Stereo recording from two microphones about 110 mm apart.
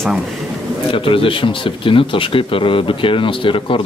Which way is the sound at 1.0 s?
55° left (ahead or behind).